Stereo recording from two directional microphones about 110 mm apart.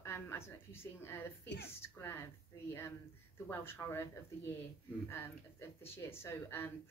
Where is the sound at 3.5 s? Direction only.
20° left (ahead or behind).